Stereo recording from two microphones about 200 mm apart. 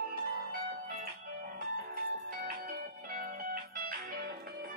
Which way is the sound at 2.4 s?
45° right (ahead or behind).